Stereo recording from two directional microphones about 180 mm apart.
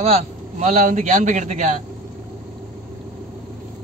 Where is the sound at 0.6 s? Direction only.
40° right (ahead or behind).